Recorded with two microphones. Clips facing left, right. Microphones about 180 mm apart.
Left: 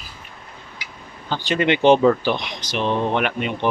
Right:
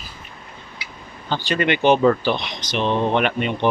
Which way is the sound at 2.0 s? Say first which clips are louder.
Even; 10° left (ahead or behind).